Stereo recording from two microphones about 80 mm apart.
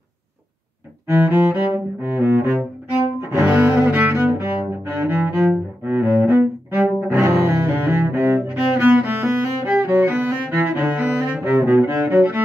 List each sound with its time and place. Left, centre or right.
1.1 s cello: right
8.4 s music: right